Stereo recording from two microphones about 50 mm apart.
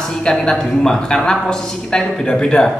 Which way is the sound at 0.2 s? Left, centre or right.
Centre.